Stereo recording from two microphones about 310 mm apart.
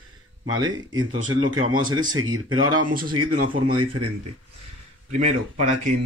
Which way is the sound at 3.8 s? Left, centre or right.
Right.